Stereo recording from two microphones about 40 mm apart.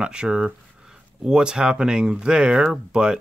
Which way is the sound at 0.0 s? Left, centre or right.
Right.